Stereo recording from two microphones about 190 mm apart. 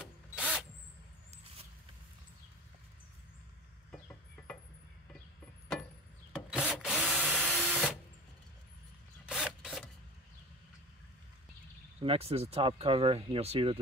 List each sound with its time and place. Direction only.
0.0 s drill: 5° right (ahead or behind)
6.3 s drill: 5° right (ahead or behind)
9.2 s rub: 5° right (ahead or behind)
12.0 s speech: 30° right (ahead or behind)